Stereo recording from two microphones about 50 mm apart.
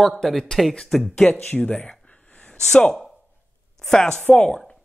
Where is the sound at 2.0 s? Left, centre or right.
Centre.